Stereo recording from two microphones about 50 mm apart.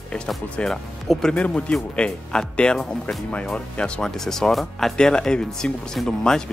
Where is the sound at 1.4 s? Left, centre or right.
Left.